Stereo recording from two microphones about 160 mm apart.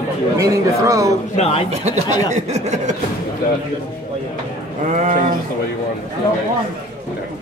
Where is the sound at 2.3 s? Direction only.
45° right (ahead or behind).